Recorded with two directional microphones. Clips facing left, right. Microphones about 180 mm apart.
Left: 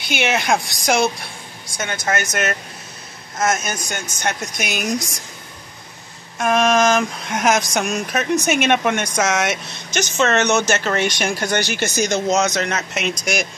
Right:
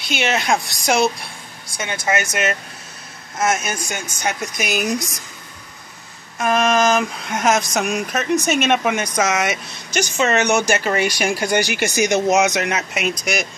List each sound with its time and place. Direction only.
0.1 s speech: centre (ahead or behind)
6.3 s speech: centre (ahead or behind)
13.2 s speech: 5° right (ahead or behind)